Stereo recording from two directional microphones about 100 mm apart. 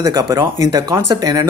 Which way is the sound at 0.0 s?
35° right (ahead or behind).